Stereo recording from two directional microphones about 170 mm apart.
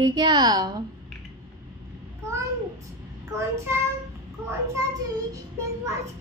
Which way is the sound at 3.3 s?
15° right (ahead or behind).